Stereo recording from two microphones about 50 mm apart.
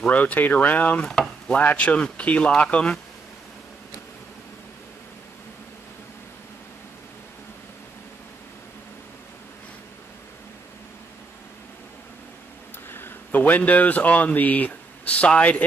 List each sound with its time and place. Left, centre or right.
0.0 s speech: left
1.0 s speech: centre
1.5 s speech: left
12.9 s speech: left